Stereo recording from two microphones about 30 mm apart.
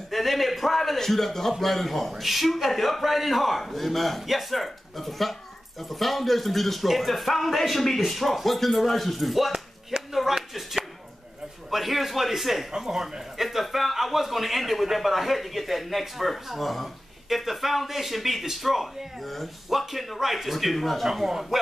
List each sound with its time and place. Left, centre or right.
0.1 s a man's voice: centre
9.9 s a sound: right
11.7 s speech: centre
12.7 s speech: centre
21.1 s a man's voice: centre